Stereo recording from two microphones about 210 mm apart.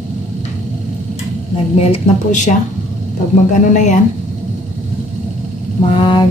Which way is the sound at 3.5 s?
35° left (ahead or behind).